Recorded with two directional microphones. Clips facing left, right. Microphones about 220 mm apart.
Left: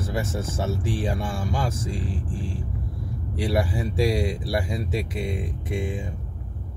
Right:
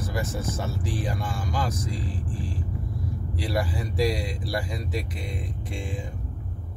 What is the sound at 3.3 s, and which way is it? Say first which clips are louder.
Speech: left 4 dB; 25° left (ahead or behind).